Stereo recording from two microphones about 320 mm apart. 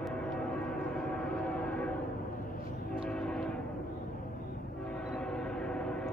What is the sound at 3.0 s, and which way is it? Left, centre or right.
Train, centre.